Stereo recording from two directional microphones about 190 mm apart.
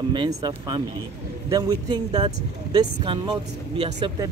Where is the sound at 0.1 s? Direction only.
25° right (ahead or behind).